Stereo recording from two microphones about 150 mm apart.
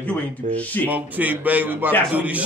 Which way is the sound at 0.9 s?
10° right (ahead or behind).